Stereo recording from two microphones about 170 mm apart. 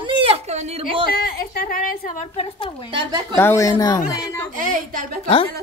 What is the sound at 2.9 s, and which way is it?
Speech, 30° right (ahead or behind).